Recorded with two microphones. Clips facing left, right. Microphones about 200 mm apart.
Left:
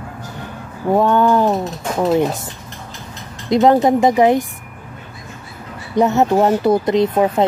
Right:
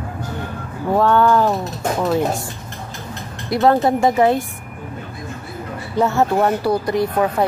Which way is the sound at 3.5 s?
15° left (ahead or behind).